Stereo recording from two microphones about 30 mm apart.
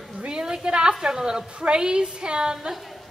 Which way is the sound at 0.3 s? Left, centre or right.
Right.